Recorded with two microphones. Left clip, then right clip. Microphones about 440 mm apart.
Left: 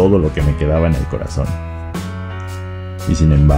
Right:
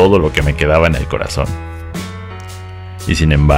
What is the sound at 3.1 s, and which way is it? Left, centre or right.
Speech, centre.